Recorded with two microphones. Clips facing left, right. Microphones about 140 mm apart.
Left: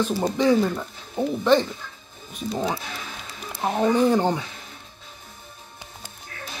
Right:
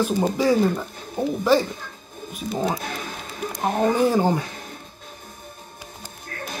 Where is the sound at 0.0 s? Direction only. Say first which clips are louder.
Right 1 dB; 5° right (ahead or behind).